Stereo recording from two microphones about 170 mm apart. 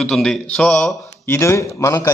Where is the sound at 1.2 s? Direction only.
15° left (ahead or behind).